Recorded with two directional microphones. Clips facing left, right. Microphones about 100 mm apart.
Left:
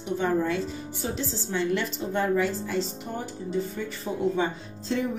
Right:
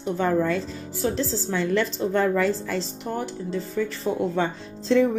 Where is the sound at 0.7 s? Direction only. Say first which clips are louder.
Right 6 dB; 90° right.